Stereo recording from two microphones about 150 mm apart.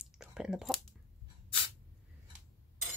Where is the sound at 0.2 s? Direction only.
5° right (ahead or behind).